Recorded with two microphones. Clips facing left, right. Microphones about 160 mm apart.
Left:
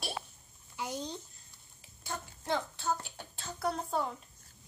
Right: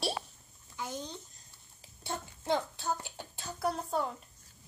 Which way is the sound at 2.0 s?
25° right (ahead or behind).